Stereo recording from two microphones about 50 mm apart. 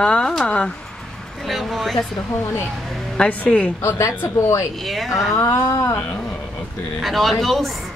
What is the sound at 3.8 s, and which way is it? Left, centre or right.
Speech, left.